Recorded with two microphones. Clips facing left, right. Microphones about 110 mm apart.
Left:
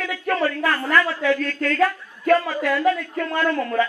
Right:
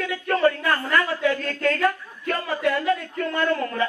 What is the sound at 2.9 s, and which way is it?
Speech, 40° right (ahead or behind).